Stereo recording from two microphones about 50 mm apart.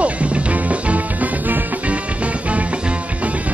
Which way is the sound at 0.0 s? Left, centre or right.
Right.